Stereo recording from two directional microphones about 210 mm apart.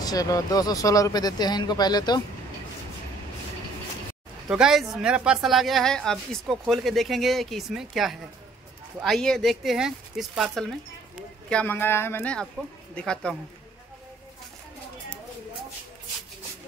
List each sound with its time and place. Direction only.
0.0 s speech: 15° left (ahead or behind)
4.5 s speech: centre (ahead or behind)